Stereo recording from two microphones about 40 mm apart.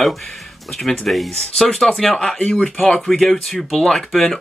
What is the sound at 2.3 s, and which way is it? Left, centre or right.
Speech, left.